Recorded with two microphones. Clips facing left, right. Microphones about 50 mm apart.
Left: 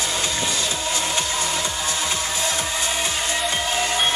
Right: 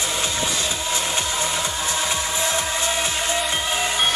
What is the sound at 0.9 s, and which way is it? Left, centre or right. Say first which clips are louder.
Music: even; right.